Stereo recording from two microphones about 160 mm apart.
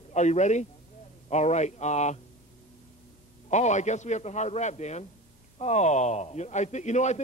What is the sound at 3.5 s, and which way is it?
A man's voice, 45° left (ahead or behind).